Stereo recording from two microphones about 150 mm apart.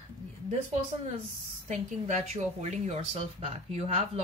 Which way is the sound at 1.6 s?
50° right (ahead or behind).